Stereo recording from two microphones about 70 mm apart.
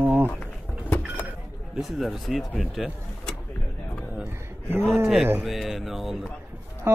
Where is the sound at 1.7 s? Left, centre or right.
Centre.